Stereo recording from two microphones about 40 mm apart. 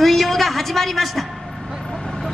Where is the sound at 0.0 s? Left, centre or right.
Centre.